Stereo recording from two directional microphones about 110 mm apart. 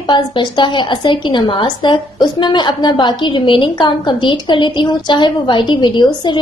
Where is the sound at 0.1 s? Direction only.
45° left (ahead or behind).